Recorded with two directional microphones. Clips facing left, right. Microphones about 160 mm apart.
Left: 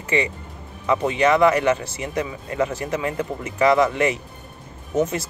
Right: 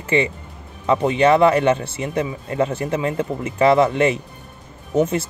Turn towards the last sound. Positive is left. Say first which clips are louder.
# right 3 dB
turn(degrees=-30)  # may be behind; listen again after turning